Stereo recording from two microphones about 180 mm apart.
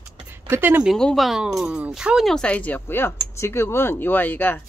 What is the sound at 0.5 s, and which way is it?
Speech, 10° right (ahead or behind).